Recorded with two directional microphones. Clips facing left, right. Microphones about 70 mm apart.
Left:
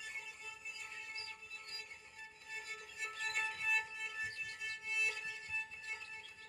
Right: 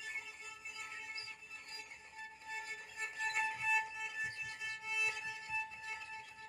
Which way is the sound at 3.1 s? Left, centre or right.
Centre.